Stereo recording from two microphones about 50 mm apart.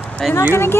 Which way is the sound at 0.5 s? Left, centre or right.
Left.